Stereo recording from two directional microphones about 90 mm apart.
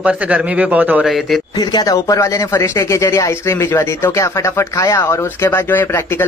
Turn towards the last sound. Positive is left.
turn(degrees=25)  # may be behind; listen again after turning